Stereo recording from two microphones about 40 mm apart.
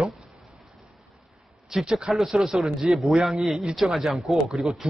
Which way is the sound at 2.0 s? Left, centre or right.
Centre.